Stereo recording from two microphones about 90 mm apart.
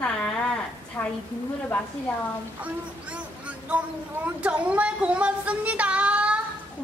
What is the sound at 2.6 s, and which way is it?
Speech, 15° right (ahead or behind).